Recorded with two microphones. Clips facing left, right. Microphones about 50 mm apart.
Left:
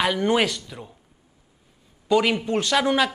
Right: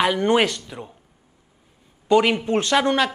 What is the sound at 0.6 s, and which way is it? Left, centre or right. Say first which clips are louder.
Speech: right 3 dB; centre.